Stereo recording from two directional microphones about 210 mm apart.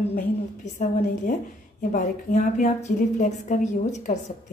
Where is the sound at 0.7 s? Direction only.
35° left (ahead or behind).